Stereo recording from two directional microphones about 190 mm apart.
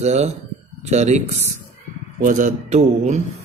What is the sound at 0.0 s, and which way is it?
Speech, 35° right (ahead or behind).